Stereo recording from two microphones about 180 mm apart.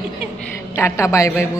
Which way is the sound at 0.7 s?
15° left (ahead or behind).